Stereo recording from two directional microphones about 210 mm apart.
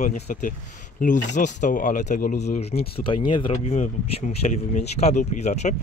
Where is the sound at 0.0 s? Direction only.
40° left (ahead or behind).